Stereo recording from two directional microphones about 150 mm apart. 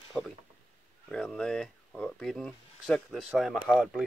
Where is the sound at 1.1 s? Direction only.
5° left (ahead or behind).